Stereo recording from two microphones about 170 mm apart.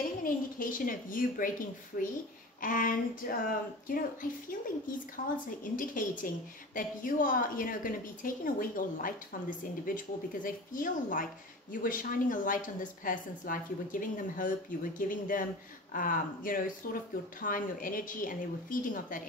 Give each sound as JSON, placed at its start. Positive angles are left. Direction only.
{"t": 0.2, "sound": "a woman's voice", "side_deg": 55}